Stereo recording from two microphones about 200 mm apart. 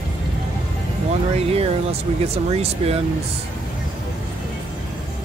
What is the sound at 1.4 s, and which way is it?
Speech, 30° right (ahead or behind).